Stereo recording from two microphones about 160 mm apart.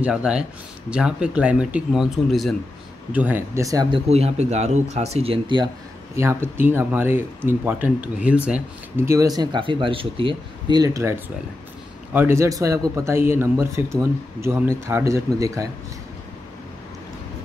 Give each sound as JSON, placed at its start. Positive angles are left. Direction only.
{"t": 0.0, "sound": "speech", "side_deg": -5}
{"t": 3.9, "sound": "speech", "side_deg": -40}
{"t": 6.1, "sound": "speech", "side_deg": -15}